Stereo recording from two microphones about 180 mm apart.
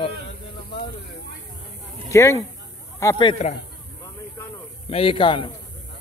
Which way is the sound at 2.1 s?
15° left (ahead or behind).